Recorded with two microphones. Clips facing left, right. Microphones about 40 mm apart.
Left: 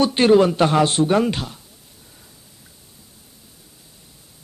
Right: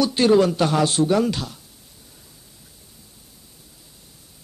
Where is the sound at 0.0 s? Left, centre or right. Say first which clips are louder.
Left 2 dB; left.